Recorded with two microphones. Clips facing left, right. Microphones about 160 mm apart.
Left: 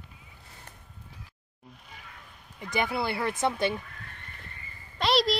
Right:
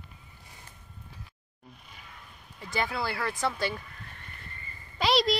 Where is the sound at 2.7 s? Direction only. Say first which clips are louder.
Left 2 dB; 20° left (ahead or behind).